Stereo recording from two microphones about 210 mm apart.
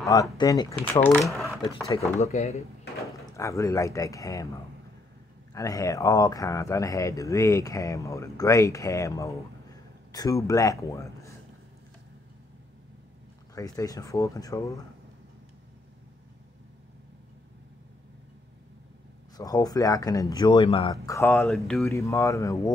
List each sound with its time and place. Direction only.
0.1 s speech: 15° left (ahead or behind)
1.3 s a sound: centre (ahead or behind)
2.1 s speech: 30° left (ahead or behind)
3.3 s speech: 15° left (ahead or behind)
5.5 s speech: 15° left (ahead or behind)
13.6 s speech: 15° left (ahead or behind)
19.3 s speech: 20° left (ahead or behind); by 21.8 s centre (ahead or behind)
21.8 s speech: 15° left (ahead or behind)